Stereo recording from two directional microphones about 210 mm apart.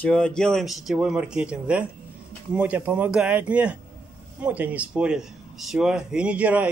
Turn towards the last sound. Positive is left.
turn(degrees=-5)  # may be behind; listen again after turning